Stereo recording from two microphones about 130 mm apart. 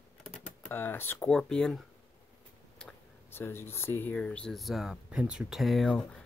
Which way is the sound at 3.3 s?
20° left (ahead or behind).